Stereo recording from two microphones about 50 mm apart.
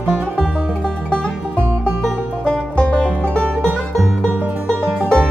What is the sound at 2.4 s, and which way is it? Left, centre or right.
Music, left.